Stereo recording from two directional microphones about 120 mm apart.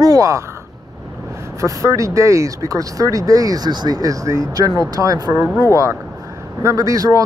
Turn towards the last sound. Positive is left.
turn(degrees=-30)  # may be behind; listen again after turning